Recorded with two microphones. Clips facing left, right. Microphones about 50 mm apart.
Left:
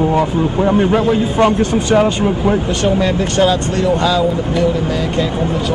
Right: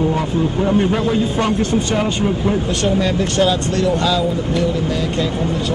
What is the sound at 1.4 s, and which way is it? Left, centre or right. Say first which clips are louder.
Speech: left 9 dB; centre.